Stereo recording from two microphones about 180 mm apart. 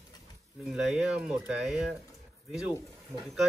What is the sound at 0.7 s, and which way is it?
Speech, 5° right (ahead or behind).